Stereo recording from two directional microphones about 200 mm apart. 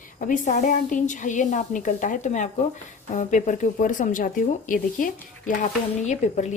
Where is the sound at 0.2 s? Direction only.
40° left (ahead or behind).